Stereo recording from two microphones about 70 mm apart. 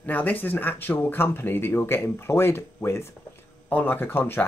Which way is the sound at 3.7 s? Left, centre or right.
Left.